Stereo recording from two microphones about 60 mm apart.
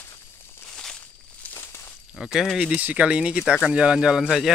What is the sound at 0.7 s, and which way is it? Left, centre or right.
Walk, centre.